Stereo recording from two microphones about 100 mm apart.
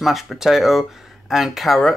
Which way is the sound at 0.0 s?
Centre (ahead or behind).